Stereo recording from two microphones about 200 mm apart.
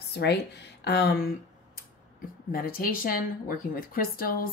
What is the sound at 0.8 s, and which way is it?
Speech, 55° left (ahead or behind).